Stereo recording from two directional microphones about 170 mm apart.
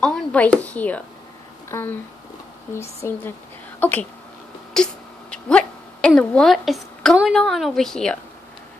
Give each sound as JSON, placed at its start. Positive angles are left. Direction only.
{"t": 0.0, "sound": "speech", "side_deg": 5}
{"t": 4.7, "sound": "a sound", "side_deg": 5}
{"t": 5.3, "sound": "a woman's voice", "side_deg": 5}